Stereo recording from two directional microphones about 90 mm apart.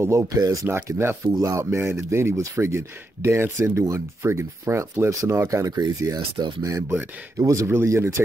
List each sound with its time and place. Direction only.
0.0 s speech: 35° right (ahead or behind)
0.7 s speech: 30° right (ahead or behind)
7.6 s speech: 30° right (ahead or behind)